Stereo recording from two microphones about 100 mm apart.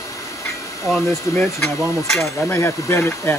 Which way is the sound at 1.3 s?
25° left (ahead or behind).